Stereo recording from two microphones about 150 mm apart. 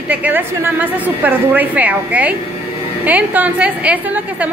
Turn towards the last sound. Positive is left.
turn(degrees=-10)  # may be behind; listen again after turning